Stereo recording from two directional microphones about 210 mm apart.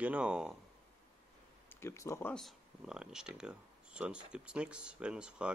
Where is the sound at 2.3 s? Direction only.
Centre (ahead or behind).